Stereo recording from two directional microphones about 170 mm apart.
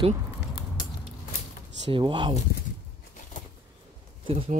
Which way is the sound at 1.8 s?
30° right (ahead or behind).